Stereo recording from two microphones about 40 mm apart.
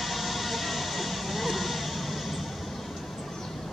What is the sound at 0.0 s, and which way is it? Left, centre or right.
Music, centre.